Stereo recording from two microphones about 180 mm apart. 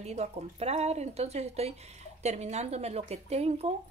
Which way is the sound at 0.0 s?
35° right (ahead or behind).